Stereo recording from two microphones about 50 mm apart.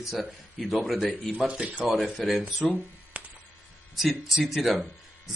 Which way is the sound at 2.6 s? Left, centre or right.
Centre.